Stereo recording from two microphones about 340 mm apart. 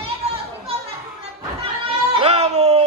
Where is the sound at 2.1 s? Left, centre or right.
Centre.